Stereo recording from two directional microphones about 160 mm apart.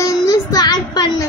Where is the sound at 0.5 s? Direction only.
25° left (ahead or behind).